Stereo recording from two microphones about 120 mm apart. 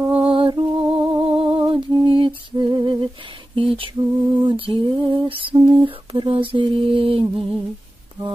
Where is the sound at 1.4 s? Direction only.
45° right (ahead or behind).